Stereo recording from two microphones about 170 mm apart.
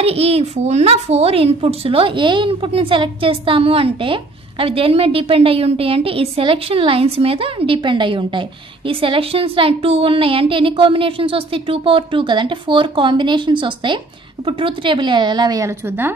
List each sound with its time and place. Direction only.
0.0 s a child's voice: 35° right (ahead or behind); by 16.1 s 15° right (ahead or behind)